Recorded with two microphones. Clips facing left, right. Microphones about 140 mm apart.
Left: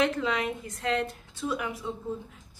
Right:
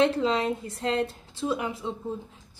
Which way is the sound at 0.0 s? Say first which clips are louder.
Right 4 dB; 30° right (ahead or behind).